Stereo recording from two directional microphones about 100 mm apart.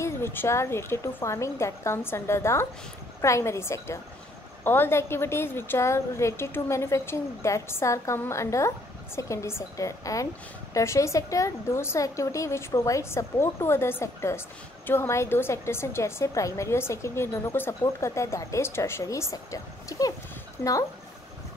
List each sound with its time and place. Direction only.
0.0 s a woman's voice: 25° left (ahead or behind)